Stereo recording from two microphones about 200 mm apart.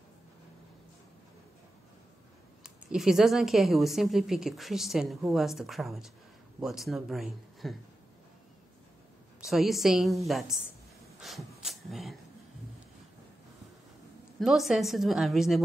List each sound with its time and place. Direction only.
2.6 s a woman's voice: 5° right (ahead or behind)
9.4 s a woman's voice: centre (ahead or behind)
14.4 s a woman's voice: centre (ahead or behind)